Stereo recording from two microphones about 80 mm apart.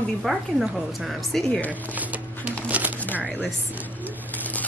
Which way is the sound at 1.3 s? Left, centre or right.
Centre.